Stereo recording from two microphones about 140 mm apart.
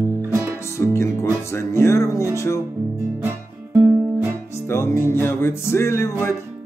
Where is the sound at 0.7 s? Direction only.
20° left (ahead or behind).